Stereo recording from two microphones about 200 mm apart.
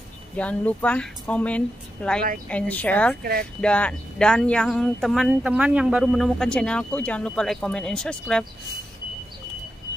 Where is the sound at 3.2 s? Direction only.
50° right (ahead or behind).